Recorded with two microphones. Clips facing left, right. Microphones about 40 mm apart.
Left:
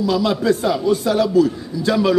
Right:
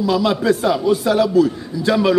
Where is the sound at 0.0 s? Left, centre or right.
Centre.